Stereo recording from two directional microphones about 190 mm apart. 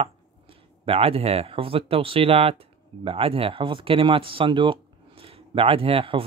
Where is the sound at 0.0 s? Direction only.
30° right (ahead or behind).